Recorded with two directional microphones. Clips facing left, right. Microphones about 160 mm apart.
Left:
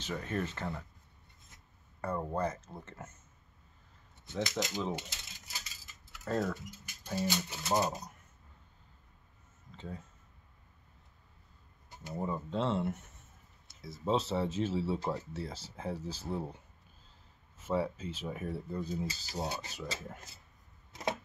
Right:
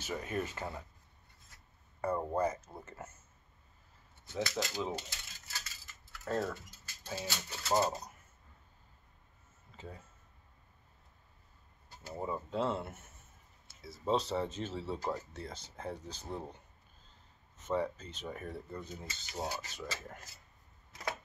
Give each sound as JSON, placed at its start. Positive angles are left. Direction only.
{"t": 0.0, "sound": "speech", "side_deg": -10}
{"t": 2.0, "sound": "speech", "side_deg": -10}
{"t": 4.3, "sound": "speech", "side_deg": 20}
{"t": 5.5, "sound": "coin", "side_deg": 15}
{"t": 6.2, "sound": "speech", "side_deg": -5}
{"t": 6.5, "sound": "speech", "side_deg": 15}
{"t": 11.9, "sound": "a sound", "side_deg": 15}
{"t": 12.2, "sound": "speech", "side_deg": -5}
{"t": 13.7, "sound": "a sound", "side_deg": -5}
{"t": 14.0, "sound": "speech", "side_deg": 0}
{"t": 17.6, "sound": "speech", "side_deg": 5}
{"t": 19.0, "sound": "speech", "side_deg": 35}
{"t": 20.9, "sound": "a sound", "side_deg": 25}